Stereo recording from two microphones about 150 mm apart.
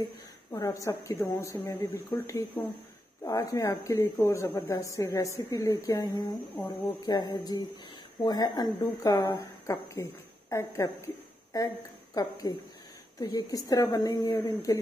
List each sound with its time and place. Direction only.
0.5 s speech: 20° left (ahead or behind)
6.5 s speech: 10° left (ahead or behind)
7.0 s speech: 30° left (ahead or behind)